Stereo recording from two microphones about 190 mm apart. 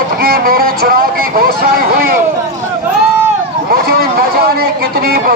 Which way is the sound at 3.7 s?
50° right (ahead or behind).